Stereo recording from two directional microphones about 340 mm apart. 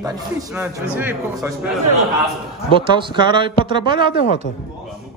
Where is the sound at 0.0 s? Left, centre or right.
Centre.